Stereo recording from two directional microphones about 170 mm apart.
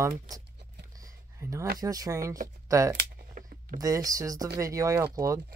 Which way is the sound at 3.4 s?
55° right (ahead or behind).